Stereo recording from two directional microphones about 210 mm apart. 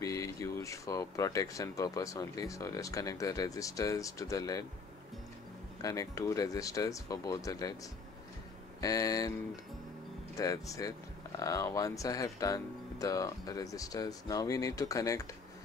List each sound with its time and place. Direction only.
0.0 s speech: 15° left (ahead or behind)
5.8 s speech: 15° left (ahead or behind)
8.8 s speech: 15° left (ahead or behind)
10.3 s speech: 15° left (ahead or behind)